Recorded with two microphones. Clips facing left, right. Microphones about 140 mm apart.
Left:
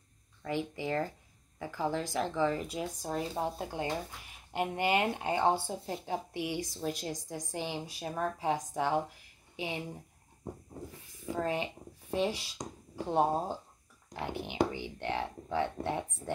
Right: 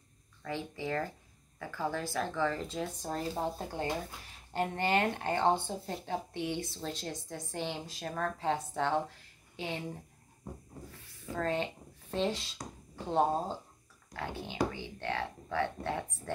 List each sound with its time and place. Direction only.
0.4 s speech: 15° left (ahead or behind)
10.9 s speech: 15° left (ahead or behind)